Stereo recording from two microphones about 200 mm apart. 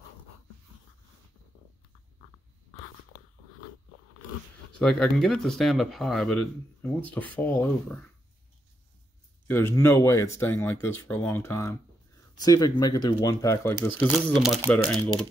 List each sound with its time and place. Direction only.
4.7 s speech: 5° left (ahead or behind)
9.5 s speech: 10° left (ahead or behind)
14.1 s speech: centre (ahead or behind)